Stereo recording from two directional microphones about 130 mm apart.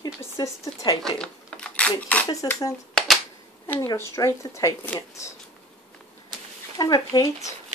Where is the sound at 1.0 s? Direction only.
5° left (ahead or behind).